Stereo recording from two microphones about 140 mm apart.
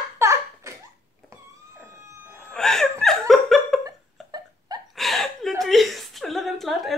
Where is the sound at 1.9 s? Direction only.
20° right (ahead or behind).